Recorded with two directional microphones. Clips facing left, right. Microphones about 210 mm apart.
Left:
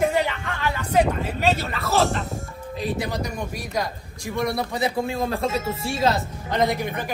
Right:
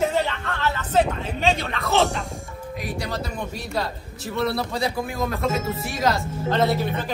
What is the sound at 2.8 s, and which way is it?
Speech, 25° left (ahead or behind).